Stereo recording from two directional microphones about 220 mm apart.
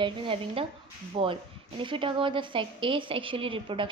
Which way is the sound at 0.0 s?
25° right (ahead or behind).